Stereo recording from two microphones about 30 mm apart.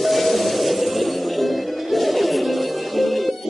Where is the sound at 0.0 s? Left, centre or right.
Centre.